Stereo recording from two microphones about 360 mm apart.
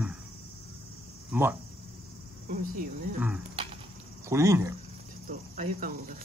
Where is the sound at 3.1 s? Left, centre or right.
Centre.